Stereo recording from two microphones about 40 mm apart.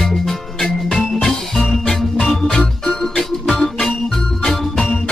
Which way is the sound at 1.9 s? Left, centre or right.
Centre.